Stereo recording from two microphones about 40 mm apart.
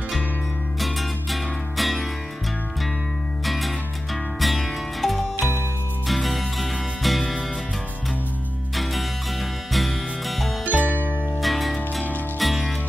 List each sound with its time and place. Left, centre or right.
0.7 s music: centre
3.4 s music: centre
8.7 s music: centre
10.6 s music: right
11.4 s music: centre